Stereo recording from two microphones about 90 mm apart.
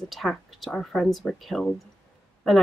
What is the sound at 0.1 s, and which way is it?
Speech, centre (ahead or behind).